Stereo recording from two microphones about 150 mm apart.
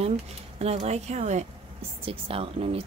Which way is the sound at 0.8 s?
50° right (ahead or behind).